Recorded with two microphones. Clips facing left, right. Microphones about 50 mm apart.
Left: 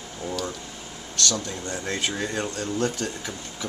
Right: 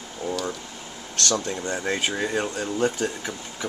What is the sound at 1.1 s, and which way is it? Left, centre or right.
Speech, right.